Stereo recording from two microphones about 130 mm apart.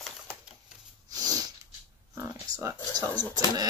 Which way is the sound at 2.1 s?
25° right (ahead or behind).